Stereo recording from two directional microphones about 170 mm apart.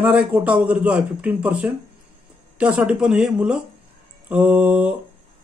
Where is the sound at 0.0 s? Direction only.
10° right (ahead or behind).